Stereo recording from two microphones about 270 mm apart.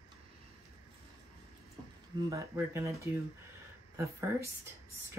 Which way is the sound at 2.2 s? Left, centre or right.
Centre.